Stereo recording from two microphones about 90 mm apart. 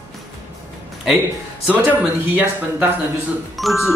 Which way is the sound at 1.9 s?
20° right (ahead or behind).